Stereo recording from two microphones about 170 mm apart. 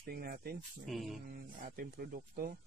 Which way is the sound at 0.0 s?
60° right (ahead or behind).